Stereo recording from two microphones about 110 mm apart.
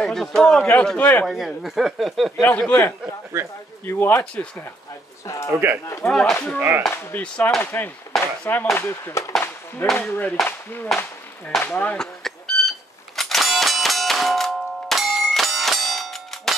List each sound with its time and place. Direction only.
0.0 s speech: 5° left (ahead or behind)
1.2 s speech: centre (ahead or behind)
2.6 s speech: 10° left (ahead or behind)
3.3 s speech: 25° right (ahead or behind)
3.8 s speech: 20° left (ahead or behind)
4.2 s speech: 10° left (ahead or behind)
5.2 s speech: 30° left (ahead or behind)
5.5 s speech: 20° right (ahead or behind)
6.0 s speech: 5° left (ahead or behind)
8.1 s chop: centre (ahead or behind)
8.7 s speech: 20° left (ahead or behind)
11.6 s a sound: 15° left (ahead or behind)